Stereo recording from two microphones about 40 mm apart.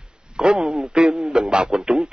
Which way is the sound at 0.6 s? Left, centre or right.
Centre.